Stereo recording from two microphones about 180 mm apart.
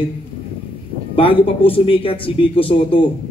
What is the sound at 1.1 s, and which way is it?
A man's voice, 30° left (ahead or behind).